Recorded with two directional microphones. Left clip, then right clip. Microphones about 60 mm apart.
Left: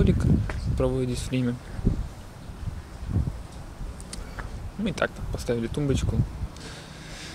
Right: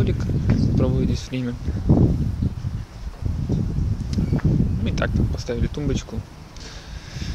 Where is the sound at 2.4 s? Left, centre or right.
Centre.